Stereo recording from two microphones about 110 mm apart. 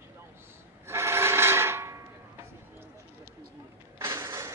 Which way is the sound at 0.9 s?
25° right (ahead or behind).